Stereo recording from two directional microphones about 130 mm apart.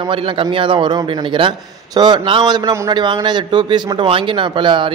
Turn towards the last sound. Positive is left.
turn(degrees=-40)  # may be behind; listen again after turning